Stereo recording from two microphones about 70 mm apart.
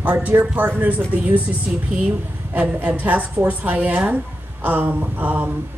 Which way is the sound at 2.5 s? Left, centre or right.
Right.